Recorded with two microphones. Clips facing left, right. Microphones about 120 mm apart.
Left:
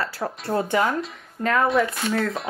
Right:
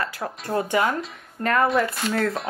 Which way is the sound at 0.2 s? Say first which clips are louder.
Left 2 dB; centre (ahead or behind).